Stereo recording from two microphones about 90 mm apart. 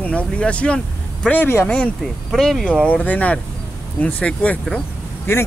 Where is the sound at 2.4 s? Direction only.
Centre (ahead or behind).